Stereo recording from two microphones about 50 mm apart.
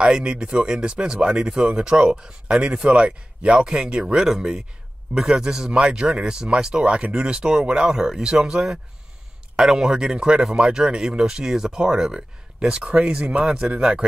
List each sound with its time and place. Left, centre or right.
0.0 s speech: centre